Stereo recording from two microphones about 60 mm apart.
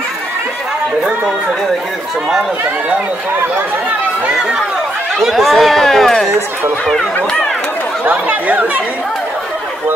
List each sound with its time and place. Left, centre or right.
5.2 s speech: centre
8.0 s speech: right